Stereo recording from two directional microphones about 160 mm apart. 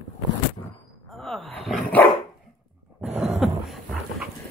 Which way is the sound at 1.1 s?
Centre (ahead or behind).